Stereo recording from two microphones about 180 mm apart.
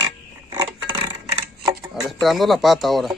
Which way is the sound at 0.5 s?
20° right (ahead or behind).